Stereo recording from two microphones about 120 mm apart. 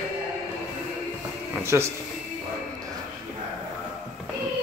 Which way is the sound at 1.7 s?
20° right (ahead or behind).